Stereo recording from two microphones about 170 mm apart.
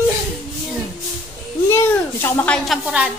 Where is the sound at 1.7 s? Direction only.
10° left (ahead or behind); by 3.1 s 5° right (ahead or behind).